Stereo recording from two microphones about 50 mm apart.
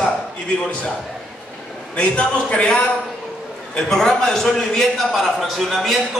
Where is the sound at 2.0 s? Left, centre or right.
Left.